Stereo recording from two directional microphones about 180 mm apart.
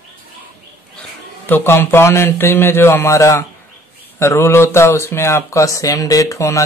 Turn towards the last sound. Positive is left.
turn(degrees=15)  # may be behind; listen again after turning